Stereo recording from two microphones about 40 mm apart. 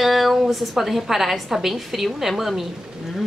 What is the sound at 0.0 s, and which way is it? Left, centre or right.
A woman's voice, centre.